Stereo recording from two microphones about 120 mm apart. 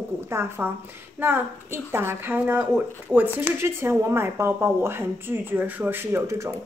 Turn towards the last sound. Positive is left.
turn(degrees=-25)  # may be behind; listen again after turning